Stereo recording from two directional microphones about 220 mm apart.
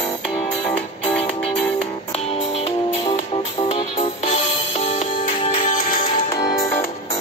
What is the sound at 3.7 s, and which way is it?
Music, 30° left (ahead or behind).